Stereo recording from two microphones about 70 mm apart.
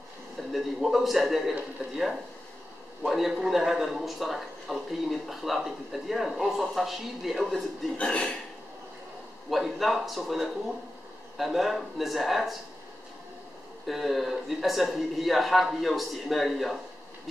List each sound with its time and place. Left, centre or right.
0.4 s a man's voice: centre
3.1 s a man's voice: centre
8.0 s speech: centre
9.5 s a man's voice: centre
13.8 s a man's voice: centre